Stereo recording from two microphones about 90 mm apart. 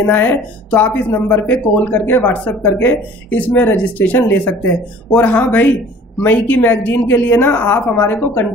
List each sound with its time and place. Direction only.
0.0 s a woman's voice: 20° left (ahead or behind)